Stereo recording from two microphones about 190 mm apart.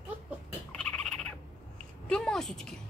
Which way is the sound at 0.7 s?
5° left (ahead or behind).